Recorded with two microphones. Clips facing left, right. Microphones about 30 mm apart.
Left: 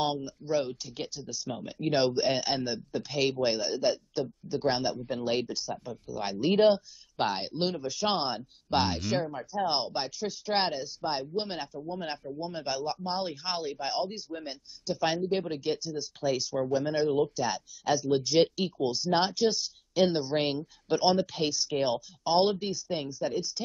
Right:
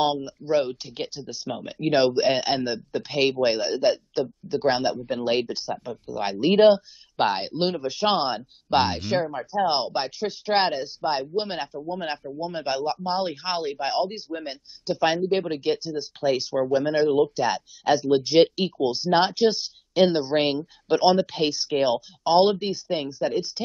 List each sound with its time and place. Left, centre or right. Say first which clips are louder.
0.0 s speech: right 6 dB; right